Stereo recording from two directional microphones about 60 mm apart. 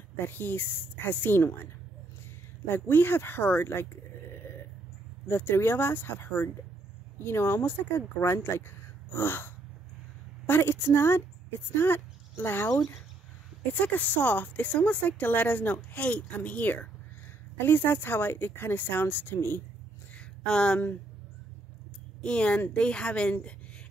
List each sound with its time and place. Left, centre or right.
0.2 s speech: left
2.7 s speech: left
5.3 s speech: left
8.4 s a sound: left
10.4 s a woman's voice: left
13.7 s speech: left
20.2 s a sound: centre
22.2 s a woman's voice: centre